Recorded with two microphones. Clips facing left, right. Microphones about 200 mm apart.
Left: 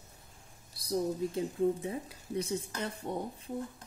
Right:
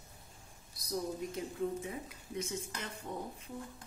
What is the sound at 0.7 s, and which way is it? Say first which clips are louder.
A woman's voice: left 6 dB; 30° left (ahead or behind).